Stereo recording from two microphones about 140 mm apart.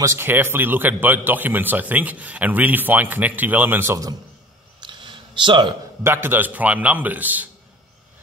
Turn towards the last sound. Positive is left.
turn(degrees=-10)  # may be behind; listen again after turning